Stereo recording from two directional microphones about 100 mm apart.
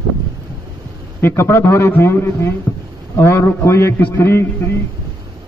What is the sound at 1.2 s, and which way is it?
A man's voice, 25° left (ahead or behind).